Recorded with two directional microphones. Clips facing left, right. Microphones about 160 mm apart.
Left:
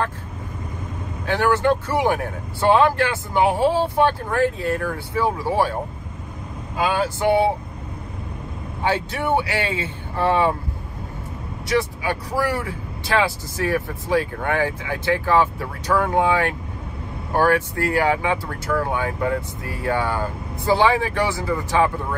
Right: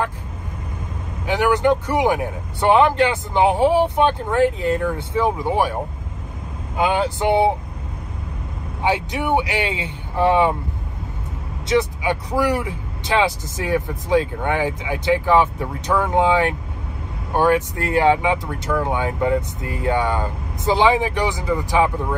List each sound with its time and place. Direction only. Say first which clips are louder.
1.2 s speech: right 1 dB; 15° right (ahead or behind)
6.8 s speech: right 2 dB; 20° right (ahead or behind)
8.8 s speech: right 1 dB; 15° right (ahead or behind)
11.6 s speech: right 3 dB; 20° right (ahead or behind)